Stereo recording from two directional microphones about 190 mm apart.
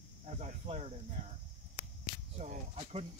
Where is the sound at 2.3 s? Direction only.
35° right (ahead or behind).